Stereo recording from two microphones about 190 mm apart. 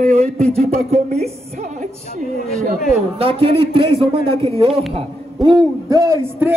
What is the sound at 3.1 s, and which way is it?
A man's voice, 30° right (ahead or behind).